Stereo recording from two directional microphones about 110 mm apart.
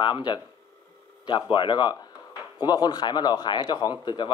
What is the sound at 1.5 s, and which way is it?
Speech, 45° left (ahead or behind).